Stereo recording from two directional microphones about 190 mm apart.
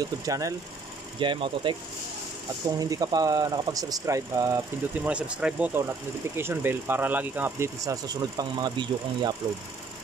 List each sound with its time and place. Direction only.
0.3 s speech: 15° right (ahead or behind)
2.8 s speech: 20° right (ahead or behind)